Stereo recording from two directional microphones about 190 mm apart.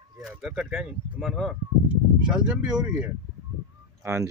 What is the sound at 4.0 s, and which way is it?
Speech, 15° right (ahead or behind).